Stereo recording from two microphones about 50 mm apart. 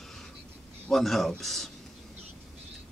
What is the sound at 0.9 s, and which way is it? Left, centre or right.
Speech, centre.